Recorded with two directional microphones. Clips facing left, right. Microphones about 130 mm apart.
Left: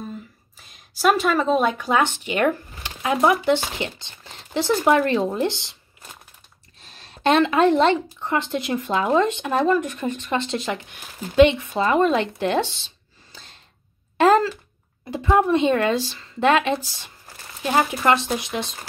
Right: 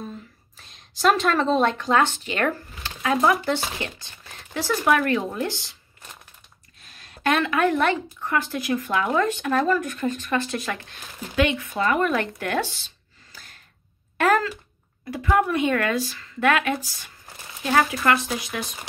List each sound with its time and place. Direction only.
0.6 s a woman's voice: 5° left (ahead or behind)
2.0 s speech: 15° left (ahead or behind)
6.8 s speech: 25° left (ahead or behind)
12.4 s a sound: 25° left (ahead or behind)
14.1 s speech: 25° left (ahead or behind)